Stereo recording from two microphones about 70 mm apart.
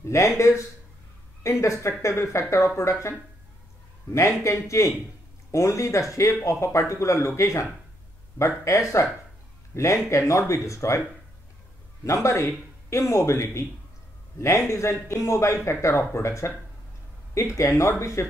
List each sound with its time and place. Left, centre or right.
0.5 s speech: left
4.4 s speech: left
12.0 s speech: left
14.7 s speech: left